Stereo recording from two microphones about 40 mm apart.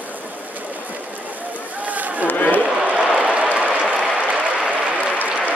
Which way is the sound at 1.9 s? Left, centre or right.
Right.